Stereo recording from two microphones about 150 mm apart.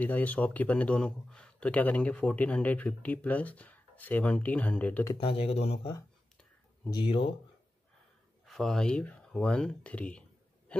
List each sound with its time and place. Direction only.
0.0 s a man's voice: 10° left (ahead or behind)
5.1 s speech: 40° left (ahead or behind)
6.9 s speech: 35° left (ahead or behind)
8.5 s a man's voice: centre (ahead or behind)